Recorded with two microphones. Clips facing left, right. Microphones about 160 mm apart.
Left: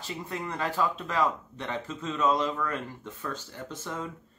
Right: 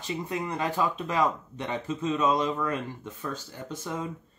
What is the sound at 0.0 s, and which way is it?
Speech, 15° right (ahead or behind).